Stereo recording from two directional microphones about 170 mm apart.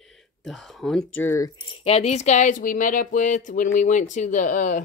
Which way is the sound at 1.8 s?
35° left (ahead or behind).